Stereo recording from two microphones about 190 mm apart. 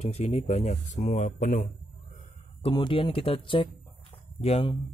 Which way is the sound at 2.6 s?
25° left (ahead or behind).